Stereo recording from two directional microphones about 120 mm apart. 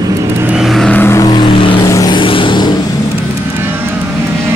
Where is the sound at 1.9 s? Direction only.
30° left (ahead or behind).